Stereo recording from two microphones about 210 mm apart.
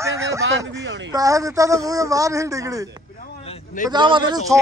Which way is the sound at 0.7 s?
60° right (ahead or behind).